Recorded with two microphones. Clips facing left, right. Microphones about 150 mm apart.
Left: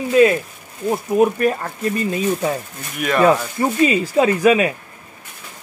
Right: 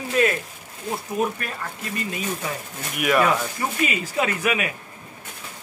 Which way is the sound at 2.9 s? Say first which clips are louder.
Left 1 dB; 10° right (ahead or behind).